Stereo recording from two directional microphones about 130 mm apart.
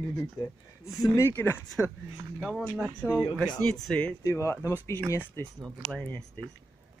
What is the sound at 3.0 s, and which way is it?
Speech, 10° left (ahead or behind).